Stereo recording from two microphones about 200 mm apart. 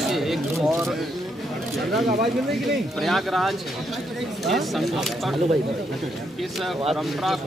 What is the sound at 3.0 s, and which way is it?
Speech, centre (ahead or behind).